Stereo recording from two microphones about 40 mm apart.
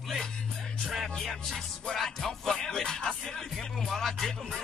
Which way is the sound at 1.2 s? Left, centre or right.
Centre.